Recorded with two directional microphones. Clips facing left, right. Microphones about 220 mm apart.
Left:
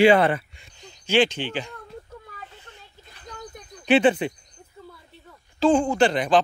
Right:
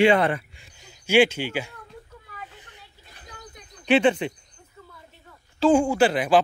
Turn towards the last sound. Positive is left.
turn(degrees=-5)  # may be behind; listen again after turning